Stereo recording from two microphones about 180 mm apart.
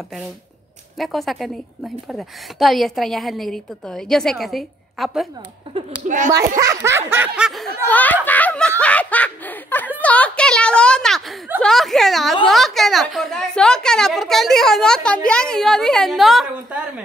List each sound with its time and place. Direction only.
0.9 s speech: centre (ahead or behind)
6.0 s speech: 45° right (ahead or behind)
6.6 s snicker: 15° right (ahead or behind)
7.9 s speech: 10° left (ahead or behind); by 17.0 s 5° right (ahead or behind)